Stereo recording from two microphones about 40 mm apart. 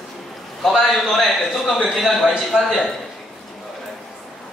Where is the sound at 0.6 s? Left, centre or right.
Centre.